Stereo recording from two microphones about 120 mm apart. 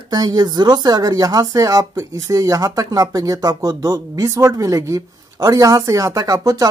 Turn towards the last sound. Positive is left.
turn(degrees=-30)  # may be behind; listen again after turning